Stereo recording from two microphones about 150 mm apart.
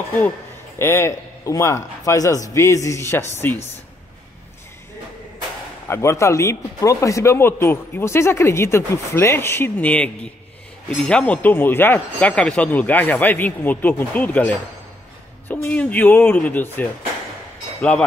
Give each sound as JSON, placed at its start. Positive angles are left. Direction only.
{"t": 0.7, "sound": "a man's voice", "side_deg": 15}
{"t": 5.9, "sound": "speech", "side_deg": 20}